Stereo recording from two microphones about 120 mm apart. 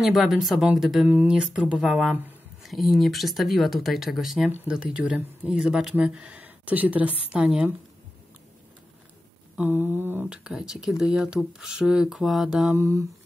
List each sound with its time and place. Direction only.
0.0 s speech: centre (ahead or behind)
9.6 s speech: 15° right (ahead or behind)
12.7 s mantra: 25° right (ahead or behind)